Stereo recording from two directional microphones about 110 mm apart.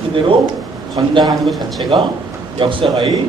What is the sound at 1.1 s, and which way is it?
A man's voice, 40° right (ahead or behind).